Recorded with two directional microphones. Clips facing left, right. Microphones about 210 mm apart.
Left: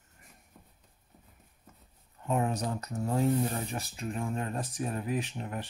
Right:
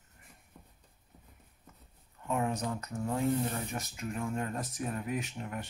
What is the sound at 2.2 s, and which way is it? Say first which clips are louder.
Speech: left 2 dB; 35° left (ahead or behind).